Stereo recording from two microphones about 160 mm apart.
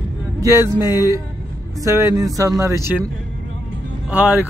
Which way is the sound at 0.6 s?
15° right (ahead or behind).